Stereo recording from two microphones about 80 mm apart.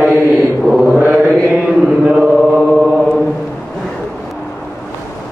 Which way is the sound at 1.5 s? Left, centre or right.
Centre.